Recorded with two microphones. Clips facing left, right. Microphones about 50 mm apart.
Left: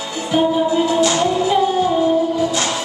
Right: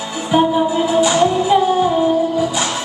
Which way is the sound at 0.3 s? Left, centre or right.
Centre.